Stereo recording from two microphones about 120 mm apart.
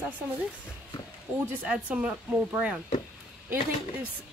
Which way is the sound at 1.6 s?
10° right (ahead or behind).